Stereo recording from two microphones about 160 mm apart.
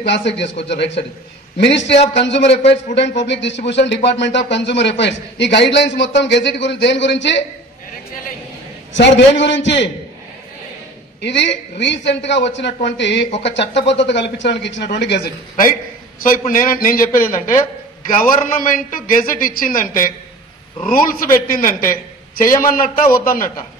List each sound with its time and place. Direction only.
0.0 s a man's voice: 90° left
9.0 s a man's voice: 90° left
11.1 s a man's voice: 90° left; by 23.5 s 60° left (ahead or behind)